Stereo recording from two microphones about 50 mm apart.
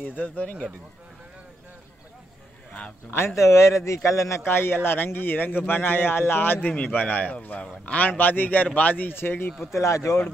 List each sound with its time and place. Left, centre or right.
0.0 s speech: left
3.1 s a man's voice: left
4.5 s a man's voice: left
6.7 s a man's voice: left
8.1 s speech: left
9.1 s a man's voice: left
9.8 s a man's voice: left